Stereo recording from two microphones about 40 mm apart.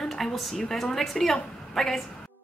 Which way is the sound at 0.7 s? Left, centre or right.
Centre.